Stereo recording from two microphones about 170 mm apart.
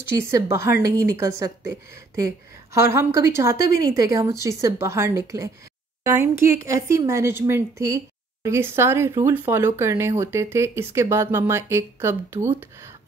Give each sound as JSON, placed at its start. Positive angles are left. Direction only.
{"t": 0.3, "sound": "speech", "side_deg": -15}